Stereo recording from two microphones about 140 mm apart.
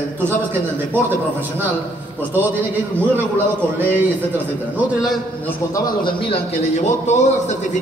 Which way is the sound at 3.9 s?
15° right (ahead or behind).